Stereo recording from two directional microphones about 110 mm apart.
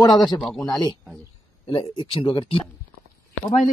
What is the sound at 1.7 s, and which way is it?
Speech, 55° left (ahead or behind).